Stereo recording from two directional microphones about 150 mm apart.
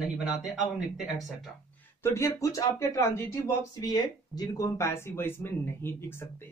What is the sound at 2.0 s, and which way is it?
A man's voice, 20° left (ahead or behind).